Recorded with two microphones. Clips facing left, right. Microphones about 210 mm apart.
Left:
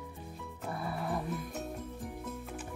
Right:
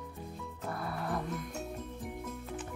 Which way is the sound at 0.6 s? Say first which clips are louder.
Left 1 dB; centre (ahead or behind).